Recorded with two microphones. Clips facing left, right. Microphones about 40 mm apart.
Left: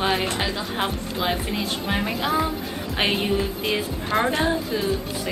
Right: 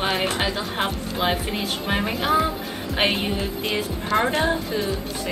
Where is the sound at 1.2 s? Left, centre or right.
Right.